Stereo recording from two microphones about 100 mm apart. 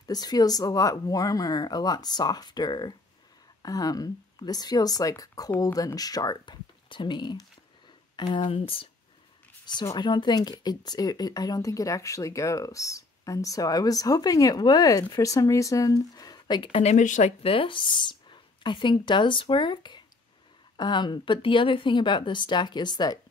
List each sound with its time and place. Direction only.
0.1 s speech: 40° left (ahead or behind)
8.2 s speech: 65° left (ahead or behind)
9.9 s speech: 50° left (ahead or behind)
17.4 s speech: 65° left (ahead or behind); by 23.1 s 45° left (ahead or behind)